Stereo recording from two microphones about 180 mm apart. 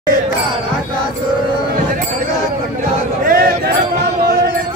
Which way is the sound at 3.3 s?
55° right (ahead or behind).